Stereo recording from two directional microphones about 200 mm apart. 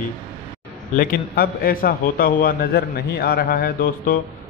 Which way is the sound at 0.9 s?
45° left (ahead or behind).